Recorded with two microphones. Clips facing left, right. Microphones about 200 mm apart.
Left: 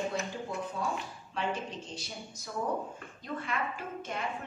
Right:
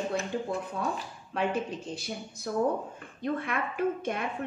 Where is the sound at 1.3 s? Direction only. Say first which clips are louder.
Right 5 dB; 60° right (ahead or behind).